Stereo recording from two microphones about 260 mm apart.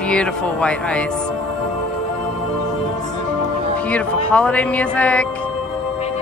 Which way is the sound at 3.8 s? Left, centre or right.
Centre.